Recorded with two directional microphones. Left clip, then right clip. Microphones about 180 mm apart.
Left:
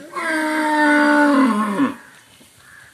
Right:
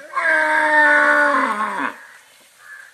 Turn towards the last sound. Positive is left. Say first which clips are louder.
# left 1 dB
turn(degrees=60)  # may be behind; listen again after turning